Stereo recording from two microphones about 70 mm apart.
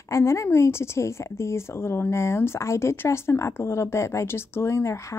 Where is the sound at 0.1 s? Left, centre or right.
Left.